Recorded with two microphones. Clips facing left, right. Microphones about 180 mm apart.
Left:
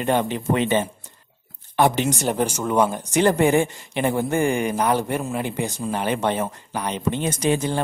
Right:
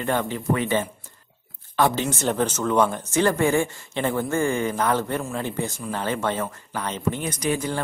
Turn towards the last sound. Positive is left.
turn(degrees=25)  # may be behind; listen again after turning